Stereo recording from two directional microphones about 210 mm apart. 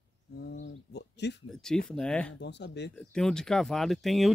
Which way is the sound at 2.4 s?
55° left (ahead or behind).